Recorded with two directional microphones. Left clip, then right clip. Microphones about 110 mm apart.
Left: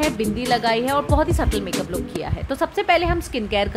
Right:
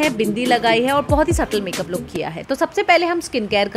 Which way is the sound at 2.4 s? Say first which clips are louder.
Right 3 dB; 40° right (ahead or behind).